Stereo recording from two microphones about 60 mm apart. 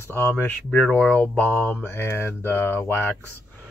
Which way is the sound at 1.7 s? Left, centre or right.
Left.